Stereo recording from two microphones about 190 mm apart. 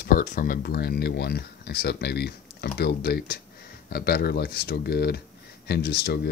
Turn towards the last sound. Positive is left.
turn(degrees=55)  # may be behind; listen again after turning